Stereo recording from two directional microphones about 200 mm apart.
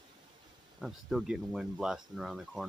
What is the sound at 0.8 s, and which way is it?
Speech, centre (ahead or behind).